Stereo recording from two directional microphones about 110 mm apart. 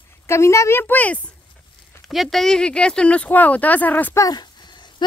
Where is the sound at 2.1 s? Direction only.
Centre (ahead or behind).